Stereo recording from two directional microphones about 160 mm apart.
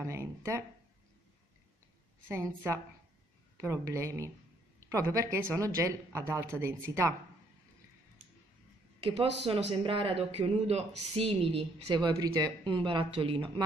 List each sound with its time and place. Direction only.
0.0 s speech: 15° right (ahead or behind)
2.2 s a woman's voice: 15° right (ahead or behind)
9.4 s speech: 35° right (ahead or behind)